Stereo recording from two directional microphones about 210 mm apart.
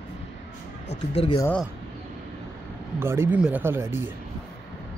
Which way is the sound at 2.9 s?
10° right (ahead or behind).